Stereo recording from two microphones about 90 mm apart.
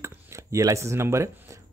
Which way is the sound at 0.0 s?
35° right (ahead or behind).